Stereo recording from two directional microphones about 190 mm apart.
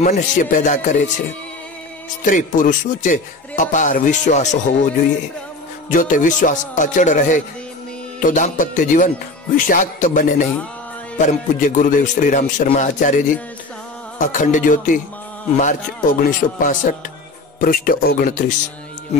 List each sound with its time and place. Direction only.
0.0 s speech: 40° left (ahead or behind)
2.2 s a man's voice: 45° left (ahead or behind)
14.2 s a man's voice: 40° left (ahead or behind)